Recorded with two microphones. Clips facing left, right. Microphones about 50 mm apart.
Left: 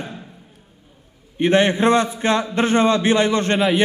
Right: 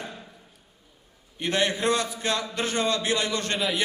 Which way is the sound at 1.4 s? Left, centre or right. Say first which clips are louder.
Left 9 dB; left.